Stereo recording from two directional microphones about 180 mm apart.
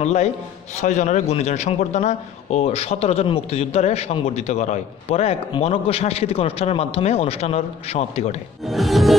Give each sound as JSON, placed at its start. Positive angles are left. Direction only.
{"t": 0.0, "sound": "speech", "side_deg": 35}
{"t": 8.6, "sound": "music", "side_deg": 0}